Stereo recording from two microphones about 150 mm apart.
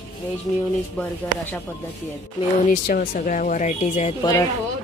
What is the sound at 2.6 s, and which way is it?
Speech, 60° left (ahead or behind).